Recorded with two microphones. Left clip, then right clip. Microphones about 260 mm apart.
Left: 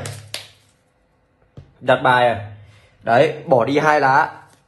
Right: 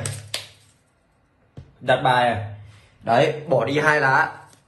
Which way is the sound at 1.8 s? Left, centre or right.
Left.